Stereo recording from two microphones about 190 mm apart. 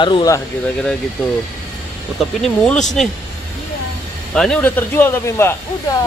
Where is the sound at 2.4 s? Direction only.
5° left (ahead or behind).